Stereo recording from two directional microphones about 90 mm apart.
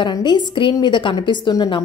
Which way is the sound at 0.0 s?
55° left (ahead or behind).